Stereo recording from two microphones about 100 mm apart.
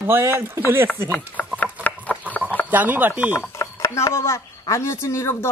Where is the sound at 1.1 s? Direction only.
15° left (ahead or behind).